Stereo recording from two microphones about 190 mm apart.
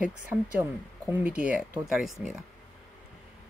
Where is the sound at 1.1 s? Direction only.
5° right (ahead or behind).